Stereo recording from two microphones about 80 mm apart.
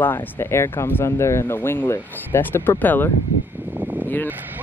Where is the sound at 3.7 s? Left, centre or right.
Right.